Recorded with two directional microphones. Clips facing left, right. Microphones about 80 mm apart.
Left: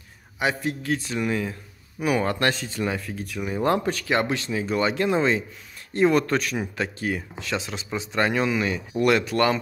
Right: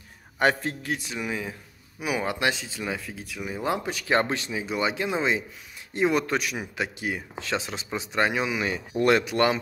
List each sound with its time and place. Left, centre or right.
0.4 s a man's voice: right
0.8 s speech: centre
4.1 s speech: right
4.5 s speech: centre
7.3 s speech: right
8.6 s speech: right